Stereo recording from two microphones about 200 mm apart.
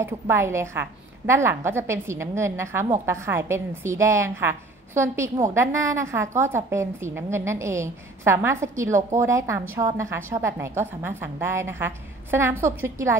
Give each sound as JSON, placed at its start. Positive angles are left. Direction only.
{"t": 0.0, "sound": "a woman's voice", "side_deg": -10}